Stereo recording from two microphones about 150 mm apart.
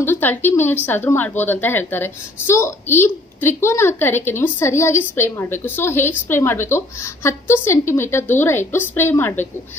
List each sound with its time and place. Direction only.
0.0 s a woman's voice: 15° left (ahead or behind)